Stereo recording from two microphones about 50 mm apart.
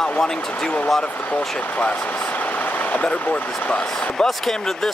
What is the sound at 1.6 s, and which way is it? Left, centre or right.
Speech, left.